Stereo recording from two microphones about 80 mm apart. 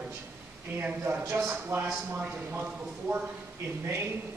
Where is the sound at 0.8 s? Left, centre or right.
Right.